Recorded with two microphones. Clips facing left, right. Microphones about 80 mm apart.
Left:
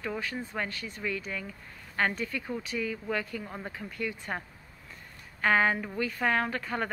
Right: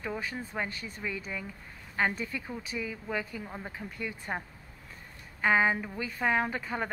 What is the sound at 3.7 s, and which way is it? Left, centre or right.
Speech, right.